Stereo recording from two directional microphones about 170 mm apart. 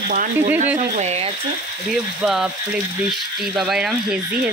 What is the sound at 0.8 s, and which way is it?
Speech, 40° right (ahead or behind).